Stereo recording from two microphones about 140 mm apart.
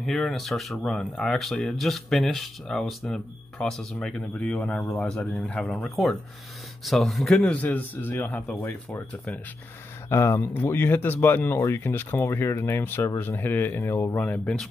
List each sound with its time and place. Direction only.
0.0 s speech: centre (ahead or behind)